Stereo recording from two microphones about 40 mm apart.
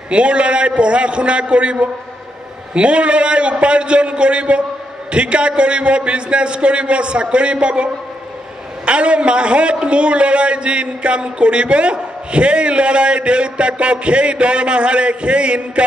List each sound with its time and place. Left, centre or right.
0.1 s a man's voice: right